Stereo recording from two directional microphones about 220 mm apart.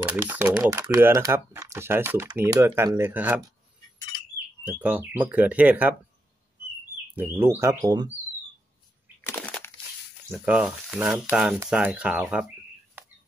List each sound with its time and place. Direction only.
0.0 s speech: 5° right (ahead or behind)
4.6 s speech: 10° right (ahead or behind)
7.2 s speech: 10° right (ahead or behind)
9.2 s a sound: 10° left (ahead or behind)
10.3 s speech: 5° right (ahead or behind)